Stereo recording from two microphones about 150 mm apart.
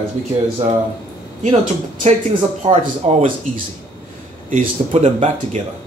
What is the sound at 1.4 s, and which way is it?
Speech, 55° right (ahead or behind).